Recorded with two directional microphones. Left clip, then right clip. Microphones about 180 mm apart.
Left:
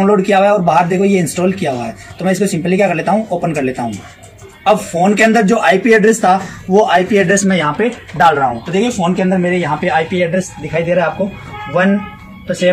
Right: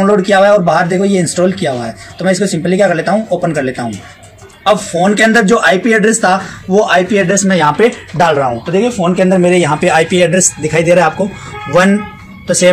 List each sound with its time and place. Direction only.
0.0 s a man's voice: 25° right (ahead or behind)
1.6 s a man's voice: 20° right (ahead or behind)
8.7 s a man's voice: 35° right (ahead or behind); by 12.0 s 55° right (ahead or behind)